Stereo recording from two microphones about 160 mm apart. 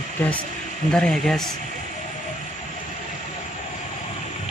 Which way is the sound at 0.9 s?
5° left (ahead or behind).